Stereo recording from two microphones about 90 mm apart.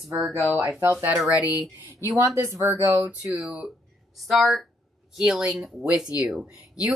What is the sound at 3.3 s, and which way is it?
Speech, 10° right (ahead or behind).